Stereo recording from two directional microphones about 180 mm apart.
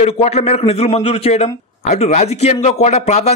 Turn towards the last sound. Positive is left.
turn(degrees=40)  # may be behind; listen again after turning